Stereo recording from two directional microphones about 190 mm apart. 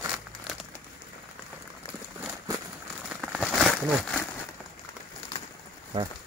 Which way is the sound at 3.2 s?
Centre (ahead or behind).